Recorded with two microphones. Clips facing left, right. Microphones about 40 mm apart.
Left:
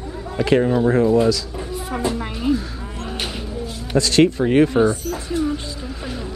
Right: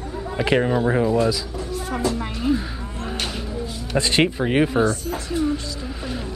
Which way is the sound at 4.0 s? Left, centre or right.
Right.